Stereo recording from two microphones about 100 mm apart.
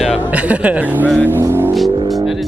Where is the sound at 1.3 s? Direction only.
25° right (ahead or behind).